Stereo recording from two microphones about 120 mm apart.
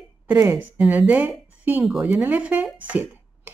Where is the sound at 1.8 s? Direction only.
5° right (ahead or behind).